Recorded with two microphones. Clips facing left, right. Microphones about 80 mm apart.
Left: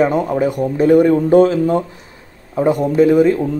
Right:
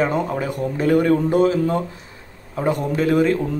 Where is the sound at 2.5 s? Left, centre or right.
Centre.